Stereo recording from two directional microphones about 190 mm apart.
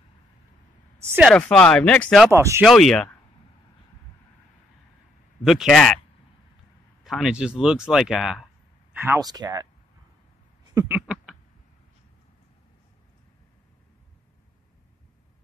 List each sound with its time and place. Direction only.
1.0 s speech: 10° right (ahead or behind)
1.3 s speech: 5° left (ahead or behind)
2.3 s speech: 15° right (ahead or behind)
2.6 s speech: centre (ahead or behind)
5.4 s speech: centre (ahead or behind)
7.0 s speech: centre (ahead or behind)
8.9 s speech: 15° right (ahead or behind)
10.9 s a sound: 5° right (ahead or behind)